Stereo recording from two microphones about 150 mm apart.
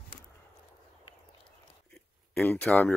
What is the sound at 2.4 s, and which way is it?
Speech, 10° left (ahead or behind).